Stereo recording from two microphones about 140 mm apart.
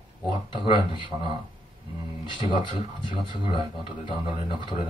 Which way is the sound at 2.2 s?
35° left (ahead or behind).